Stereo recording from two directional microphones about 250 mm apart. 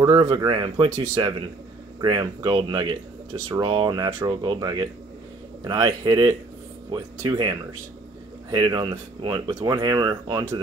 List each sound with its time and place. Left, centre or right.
0.0 s speech: centre